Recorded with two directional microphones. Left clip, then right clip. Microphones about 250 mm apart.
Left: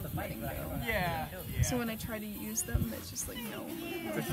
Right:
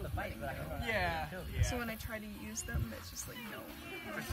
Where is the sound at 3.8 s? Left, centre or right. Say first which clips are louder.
Left 6 dB; left.